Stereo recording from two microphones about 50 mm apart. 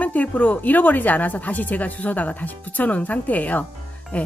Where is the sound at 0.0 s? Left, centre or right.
Left.